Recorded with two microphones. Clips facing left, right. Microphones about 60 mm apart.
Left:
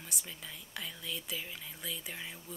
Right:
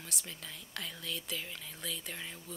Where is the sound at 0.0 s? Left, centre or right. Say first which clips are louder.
Even; centre.